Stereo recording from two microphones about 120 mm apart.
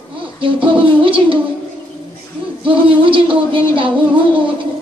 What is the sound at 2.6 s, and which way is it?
A woman's voice, 45° right (ahead or behind).